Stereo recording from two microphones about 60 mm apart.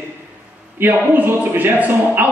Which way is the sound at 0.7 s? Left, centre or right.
Right.